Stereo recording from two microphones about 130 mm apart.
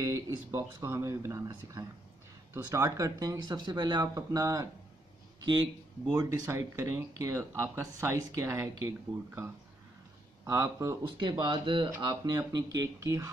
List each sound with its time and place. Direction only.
0.0 s speech: 25° right (ahead or behind)
11.1 s speech: 35° right (ahead or behind)